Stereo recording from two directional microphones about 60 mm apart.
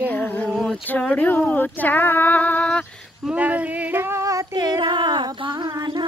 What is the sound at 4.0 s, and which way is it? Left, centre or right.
Female singing, right.